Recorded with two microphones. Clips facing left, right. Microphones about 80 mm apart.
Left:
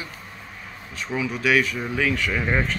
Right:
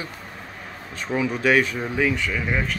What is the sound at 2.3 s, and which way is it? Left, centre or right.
Speech, centre.